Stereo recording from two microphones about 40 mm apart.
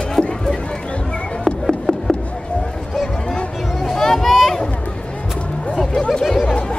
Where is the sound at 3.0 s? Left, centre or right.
Centre.